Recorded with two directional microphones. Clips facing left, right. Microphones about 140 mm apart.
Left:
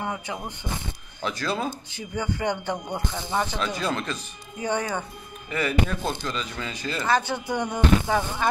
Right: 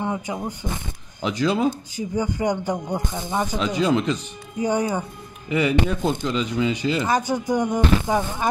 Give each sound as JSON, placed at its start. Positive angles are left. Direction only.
{"t": 0.1, "sound": "speech", "side_deg": -20}